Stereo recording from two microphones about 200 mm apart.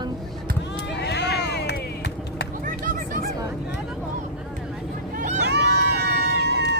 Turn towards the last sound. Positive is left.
turn(degrees=-55)  # may be behind; listen again after turning